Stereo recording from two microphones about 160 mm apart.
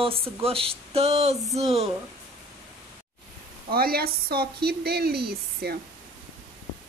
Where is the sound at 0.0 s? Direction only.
35° right (ahead or behind).